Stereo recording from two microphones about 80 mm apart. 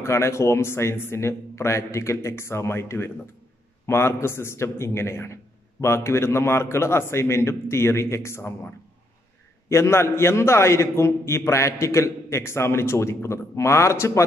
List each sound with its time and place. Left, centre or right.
0.0 s a man's voice: left
9.7 s a man's voice: left